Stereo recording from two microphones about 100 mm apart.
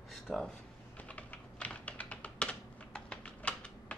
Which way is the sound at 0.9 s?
15° left (ahead or behind).